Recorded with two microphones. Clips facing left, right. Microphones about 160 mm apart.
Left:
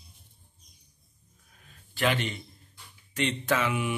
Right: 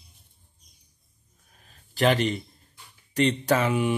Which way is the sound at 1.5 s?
35° right (ahead or behind).